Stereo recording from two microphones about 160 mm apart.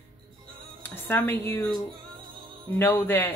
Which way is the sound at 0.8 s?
10° left (ahead or behind).